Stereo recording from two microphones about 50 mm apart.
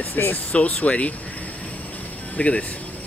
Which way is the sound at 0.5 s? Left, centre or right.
Left.